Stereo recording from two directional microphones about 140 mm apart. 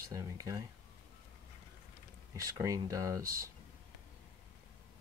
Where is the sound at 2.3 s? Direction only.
25° right (ahead or behind).